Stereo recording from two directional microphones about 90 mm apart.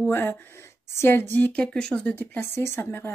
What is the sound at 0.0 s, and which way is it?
Speech, 25° left (ahead or behind).